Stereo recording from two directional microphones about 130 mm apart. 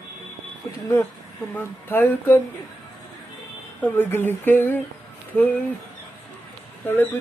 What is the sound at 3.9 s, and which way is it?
Speech, 15° left (ahead or behind).